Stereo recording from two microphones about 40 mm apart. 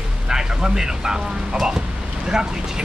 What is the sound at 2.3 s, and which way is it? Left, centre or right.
Speech, centre.